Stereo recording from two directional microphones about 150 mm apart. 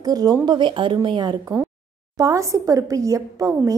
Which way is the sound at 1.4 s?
15° right (ahead or behind).